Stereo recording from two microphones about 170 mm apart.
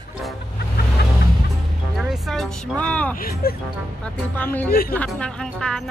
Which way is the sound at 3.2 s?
60° left (ahead or behind).